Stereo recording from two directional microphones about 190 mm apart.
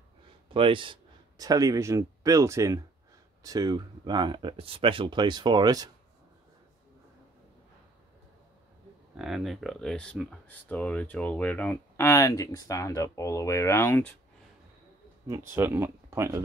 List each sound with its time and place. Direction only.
0.5 s speech: 25° right (ahead or behind)
9.1 s speech: centre (ahead or behind)
15.2 s speech: 15° right (ahead or behind)